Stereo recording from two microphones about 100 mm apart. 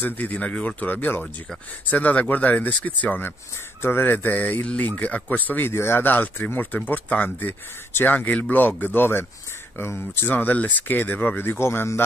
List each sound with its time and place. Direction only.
0.0 s speech: 15° left (ahead or behind)